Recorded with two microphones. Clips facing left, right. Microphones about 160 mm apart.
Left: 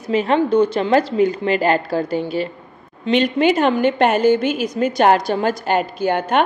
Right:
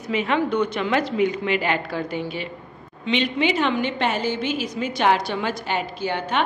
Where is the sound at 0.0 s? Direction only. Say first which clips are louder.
Left 5 dB; 35° left (ahead or behind).